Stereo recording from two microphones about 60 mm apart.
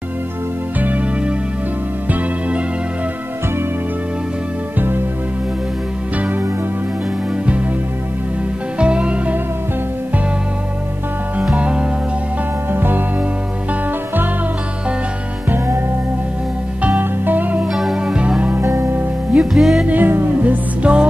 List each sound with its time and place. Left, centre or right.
0.7 s music: right
4.7 s music: right
6.1 s music: right
8.7 s music: centre
11.5 s music: centre
12.7 s music: right
17.0 s music: right
17.6 s music: centre
17.9 s music: centre
18.6 s music: right
19.3 s music: centre
19.9 s music: right
20.8 s music: centre